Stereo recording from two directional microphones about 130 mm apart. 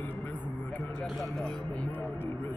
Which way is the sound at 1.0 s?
Centre (ahead or behind).